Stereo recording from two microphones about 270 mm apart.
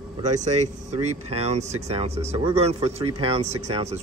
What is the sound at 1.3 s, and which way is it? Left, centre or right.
Speech, right.